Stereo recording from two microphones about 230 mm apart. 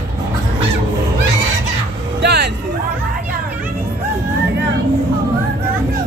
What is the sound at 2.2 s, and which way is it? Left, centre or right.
Speech, right.